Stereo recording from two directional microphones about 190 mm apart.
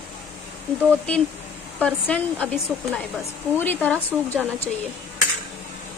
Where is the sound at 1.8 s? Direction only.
5° left (ahead or behind).